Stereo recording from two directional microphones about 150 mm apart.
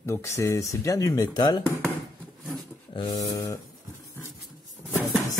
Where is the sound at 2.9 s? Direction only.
35° left (ahead or behind).